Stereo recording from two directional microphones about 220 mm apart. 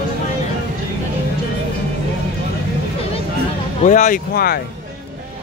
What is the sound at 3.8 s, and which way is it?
Speech, 35° left (ahead or behind).